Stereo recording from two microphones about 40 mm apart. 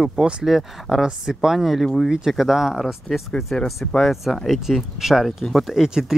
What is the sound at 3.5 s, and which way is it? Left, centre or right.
Speech, centre.